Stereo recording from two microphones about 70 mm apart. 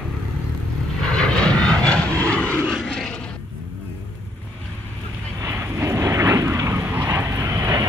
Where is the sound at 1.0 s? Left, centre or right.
Centre.